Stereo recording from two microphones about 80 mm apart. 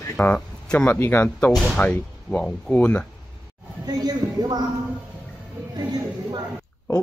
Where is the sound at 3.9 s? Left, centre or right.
Right.